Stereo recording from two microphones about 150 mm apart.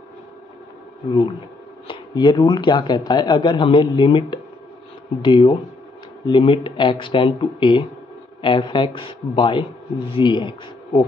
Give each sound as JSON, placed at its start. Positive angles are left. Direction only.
{"t": 1.9, "sound": "a man's voice", "side_deg": 30}